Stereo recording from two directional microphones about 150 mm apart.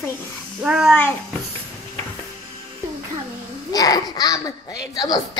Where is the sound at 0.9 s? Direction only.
5° left (ahead or behind).